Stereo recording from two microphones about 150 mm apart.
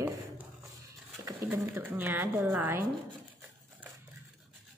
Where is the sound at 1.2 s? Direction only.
15° right (ahead or behind).